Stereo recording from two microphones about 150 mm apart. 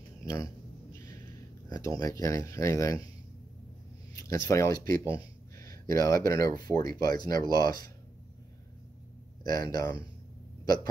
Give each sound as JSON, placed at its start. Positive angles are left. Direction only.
{"t": 0.2, "sound": "a sound", "side_deg": 25}
{"t": 1.7, "sound": "speech", "side_deg": 20}
{"t": 4.2, "sound": "speech", "side_deg": 20}
{"t": 9.4, "sound": "speech", "side_deg": 25}